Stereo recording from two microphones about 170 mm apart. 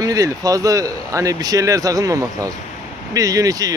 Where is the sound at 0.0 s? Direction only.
20° right (ahead or behind).